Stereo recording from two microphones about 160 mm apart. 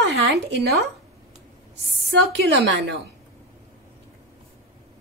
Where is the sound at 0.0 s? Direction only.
90° right.